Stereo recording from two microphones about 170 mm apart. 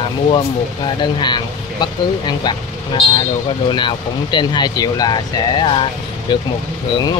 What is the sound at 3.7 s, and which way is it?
Speech, 25° left (ahead or behind).